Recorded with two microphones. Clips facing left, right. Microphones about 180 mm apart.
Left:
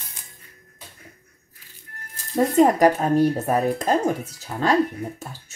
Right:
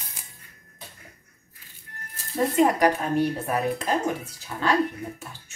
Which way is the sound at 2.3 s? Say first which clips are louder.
Left 4 dB; 45° left (ahead or behind).